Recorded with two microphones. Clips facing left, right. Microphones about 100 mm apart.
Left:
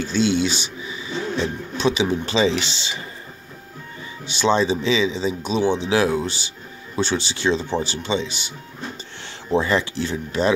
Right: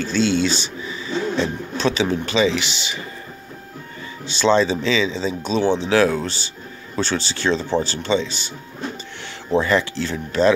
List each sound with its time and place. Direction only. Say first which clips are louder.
0.1 s speech: right 1 dB; 15° left (ahead or behind)
2.3 s speech: right 1 dB; 25° left (ahead or behind)
4.4 s speech: right 2 dB; 15° left (ahead or behind)
9.6 s speech: right 2 dB; 20° left (ahead or behind)